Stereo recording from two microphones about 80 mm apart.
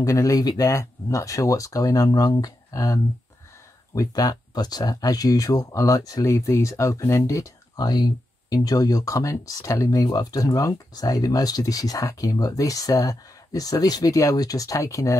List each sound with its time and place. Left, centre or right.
0.0 s speech: left
4.3 s speech: left
7.8 s speech: left